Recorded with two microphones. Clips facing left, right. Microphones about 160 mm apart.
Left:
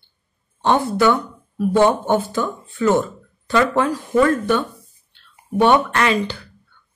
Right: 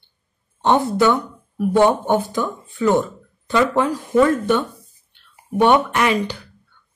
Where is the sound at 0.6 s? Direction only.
20° right (ahead or behind).